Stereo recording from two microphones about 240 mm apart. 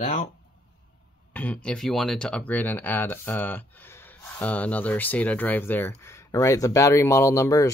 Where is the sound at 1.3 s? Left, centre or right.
Centre.